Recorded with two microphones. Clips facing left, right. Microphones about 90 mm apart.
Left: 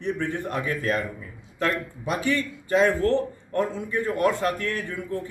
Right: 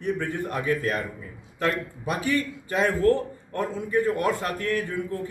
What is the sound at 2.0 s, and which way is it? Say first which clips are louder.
A man's voice: even; 25° left (ahead or behind).